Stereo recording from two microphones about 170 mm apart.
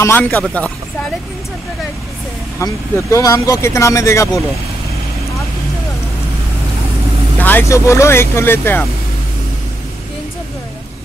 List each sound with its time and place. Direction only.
0.0 s speech: 10° left (ahead or behind)
2.6 s speech: 20° left (ahead or behind)
7.3 s speech: 10° left (ahead or behind)